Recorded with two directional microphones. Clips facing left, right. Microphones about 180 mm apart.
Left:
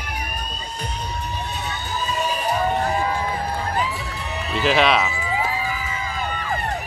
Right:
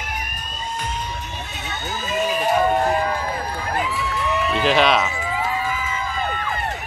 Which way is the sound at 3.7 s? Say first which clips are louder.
Right 2 dB; 60° right (ahead or behind).